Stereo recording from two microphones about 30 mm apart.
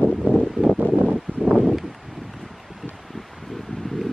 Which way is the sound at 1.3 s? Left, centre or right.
Right.